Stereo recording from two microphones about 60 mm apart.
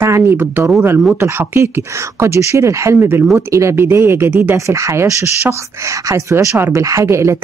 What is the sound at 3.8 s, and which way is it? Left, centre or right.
Speech, right.